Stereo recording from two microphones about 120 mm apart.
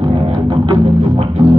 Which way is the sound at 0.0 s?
45° right (ahead or behind).